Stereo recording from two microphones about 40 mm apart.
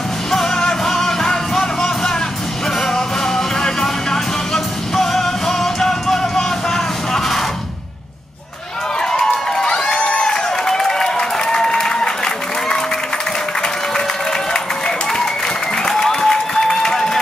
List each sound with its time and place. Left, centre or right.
0.3 s music: centre
9.9 s applause: left
15.8 s applause: centre